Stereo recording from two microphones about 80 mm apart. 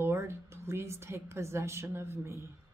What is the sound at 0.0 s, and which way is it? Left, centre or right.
A woman's voice, right.